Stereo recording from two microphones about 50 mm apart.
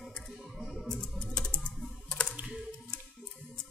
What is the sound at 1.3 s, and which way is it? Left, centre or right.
Typing, centre.